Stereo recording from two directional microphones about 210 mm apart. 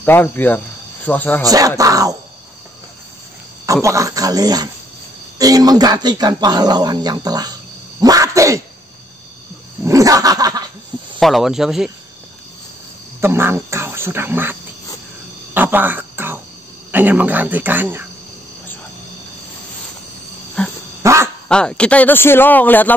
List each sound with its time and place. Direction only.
0.0 s speech: 10° left (ahead or behind)
1.5 s speech: 15° right (ahead or behind)
3.6 s speech: 15° right (ahead or behind)
8.0 s a sound: 15° right (ahead or behind)
9.8 s speech: 15° right (ahead or behind)
11.1 s speech: centre (ahead or behind)
13.2 s speech: 10° right (ahead or behind)
15.5 s music: 10° right (ahead or behind)
16.9 s speech: 10° right (ahead or behind)
20.6 s dog: 5° left (ahead or behind)
21.0 s a sound: 15° right (ahead or behind)
21.5 s speech: 5° left (ahead or behind)